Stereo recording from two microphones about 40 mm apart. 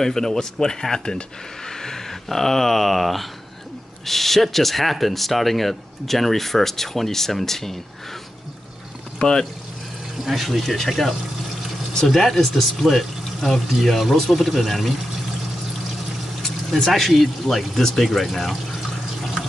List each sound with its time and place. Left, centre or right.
0.0 s speech: centre
9.2 s speech: centre
10.2 s speech: centre
17.1 s speech: centre